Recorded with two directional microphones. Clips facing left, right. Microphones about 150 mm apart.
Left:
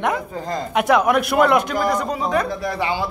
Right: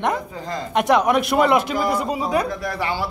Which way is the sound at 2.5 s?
25° left (ahead or behind).